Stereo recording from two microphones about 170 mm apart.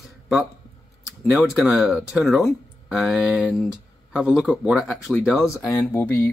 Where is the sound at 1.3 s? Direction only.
Centre (ahead or behind).